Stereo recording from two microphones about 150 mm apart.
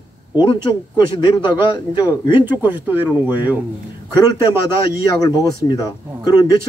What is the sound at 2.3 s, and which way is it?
Speech, 15° right (ahead or behind).